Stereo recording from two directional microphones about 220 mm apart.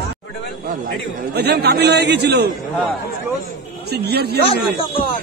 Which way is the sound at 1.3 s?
45° right (ahead or behind).